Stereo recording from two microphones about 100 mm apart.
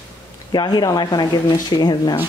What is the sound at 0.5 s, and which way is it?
Speech, 45° left (ahead or behind).